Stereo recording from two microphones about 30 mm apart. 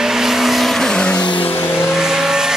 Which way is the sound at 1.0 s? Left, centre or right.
Left.